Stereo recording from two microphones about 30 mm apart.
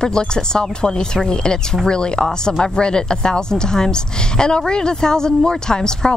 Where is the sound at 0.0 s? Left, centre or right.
Left.